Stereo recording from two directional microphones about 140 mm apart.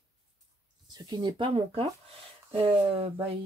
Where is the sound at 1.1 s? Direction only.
30° right (ahead or behind).